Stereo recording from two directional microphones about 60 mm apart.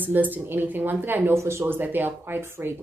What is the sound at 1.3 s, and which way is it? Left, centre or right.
Speech, right.